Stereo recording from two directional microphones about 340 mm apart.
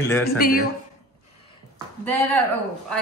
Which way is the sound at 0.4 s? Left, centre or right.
Left.